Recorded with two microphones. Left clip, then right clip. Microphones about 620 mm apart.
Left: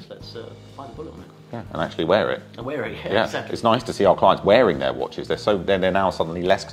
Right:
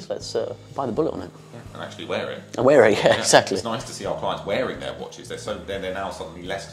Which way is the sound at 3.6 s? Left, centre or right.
Left.